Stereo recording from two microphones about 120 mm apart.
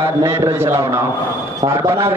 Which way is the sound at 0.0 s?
25° right (ahead or behind).